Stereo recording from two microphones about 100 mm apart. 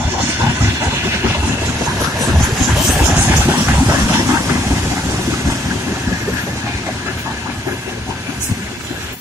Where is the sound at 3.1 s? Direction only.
20° right (ahead or behind).